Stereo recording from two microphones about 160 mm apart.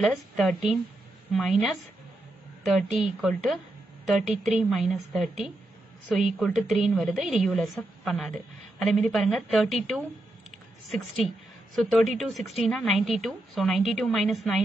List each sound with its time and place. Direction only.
0.0 s a woman's voice: centre (ahead or behind)
11.7 s a woman's voice: centre (ahead or behind)